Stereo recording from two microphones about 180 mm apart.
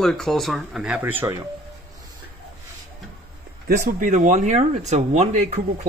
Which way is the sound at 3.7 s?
45° right (ahead or behind).